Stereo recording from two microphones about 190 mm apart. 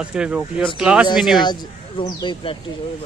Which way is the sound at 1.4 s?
25° left (ahead or behind).